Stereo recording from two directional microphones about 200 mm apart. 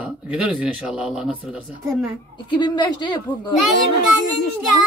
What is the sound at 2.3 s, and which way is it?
Speech, 20° left (ahead or behind).